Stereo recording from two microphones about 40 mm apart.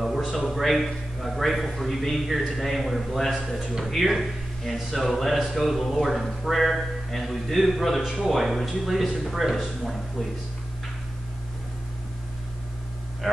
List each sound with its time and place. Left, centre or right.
0.0 s speech: centre
3.3 s speech: centre
8.0 s speech: centre
8.3 s speech: centre
13.2 s speech: centre